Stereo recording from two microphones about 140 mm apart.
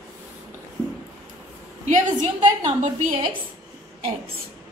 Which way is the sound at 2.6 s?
55° right (ahead or behind).